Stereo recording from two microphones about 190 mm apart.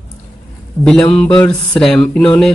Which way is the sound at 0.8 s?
5° left (ahead or behind).